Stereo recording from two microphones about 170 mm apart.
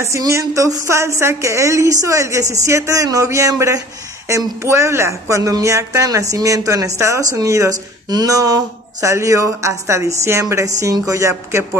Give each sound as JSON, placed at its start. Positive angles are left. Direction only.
{"t": 0.0, "sound": "speech", "side_deg": -15}